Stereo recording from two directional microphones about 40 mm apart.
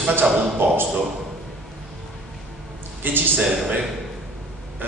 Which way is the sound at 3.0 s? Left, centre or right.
Right.